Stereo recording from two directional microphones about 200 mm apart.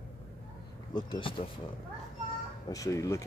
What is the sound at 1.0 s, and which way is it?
Speech, 25° left (ahead or behind).